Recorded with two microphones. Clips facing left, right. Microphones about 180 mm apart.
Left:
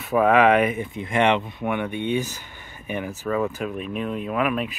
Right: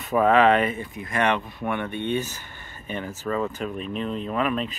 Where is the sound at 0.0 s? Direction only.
5° left (ahead or behind).